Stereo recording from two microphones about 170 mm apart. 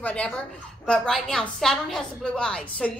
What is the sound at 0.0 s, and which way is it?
A woman's voice, 5° left (ahead or behind).